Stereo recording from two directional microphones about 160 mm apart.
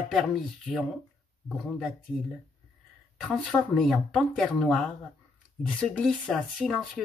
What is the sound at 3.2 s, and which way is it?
Speech, centre (ahead or behind).